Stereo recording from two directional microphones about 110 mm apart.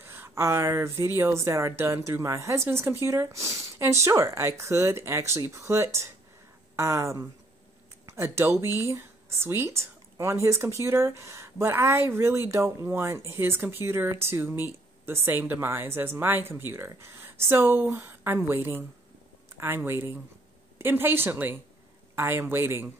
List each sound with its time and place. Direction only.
0.0 s speech: 25° right (ahead or behind)